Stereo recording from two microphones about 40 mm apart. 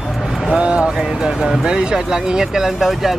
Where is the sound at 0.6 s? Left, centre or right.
Right.